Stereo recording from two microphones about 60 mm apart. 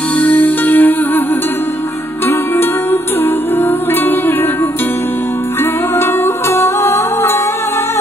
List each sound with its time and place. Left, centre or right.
0.2 s music: left
2.2 s music: left
5.9 s music: left